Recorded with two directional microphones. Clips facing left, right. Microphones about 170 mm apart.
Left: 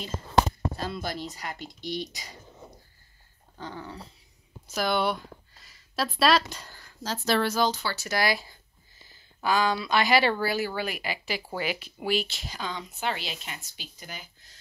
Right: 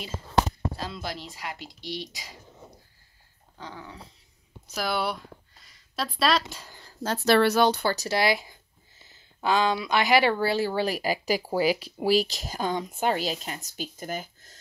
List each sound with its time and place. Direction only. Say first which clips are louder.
0.7 s speech: left 2 dB; 50° left (ahead or behind)
1.3 s speech: even; 5° right (ahead or behind)
3.5 s speech: left 3 dB; centre (ahead or behind)
4.6 s a sound: left 2 dB; centre (ahead or behind)
6.1 s speech: left 2 dB; centre (ahead or behind)
7.0 s speech: right 5 dB; 60° right (ahead or behind)
7.9 s speech: right 4 dB; 35° right (ahead or behind)
8.2 s speech: left 1 dB; 20° right (ahead or behind)
10.4 s speech: right 4 dB; 30° right (ahead or behind); by 14.6 s 45° right (ahead or behind)